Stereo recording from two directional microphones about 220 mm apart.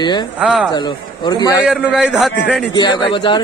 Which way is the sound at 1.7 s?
5° right (ahead or behind).